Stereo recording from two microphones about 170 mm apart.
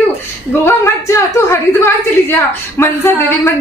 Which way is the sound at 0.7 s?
15° left (ahead or behind).